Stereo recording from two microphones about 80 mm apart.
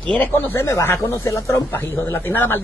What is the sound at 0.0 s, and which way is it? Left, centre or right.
Speech, centre.